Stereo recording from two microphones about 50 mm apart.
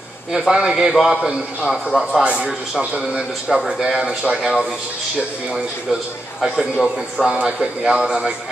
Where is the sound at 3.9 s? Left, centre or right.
Right.